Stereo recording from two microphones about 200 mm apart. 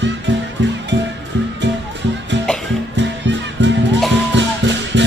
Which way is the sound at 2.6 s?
65° right (ahead or behind).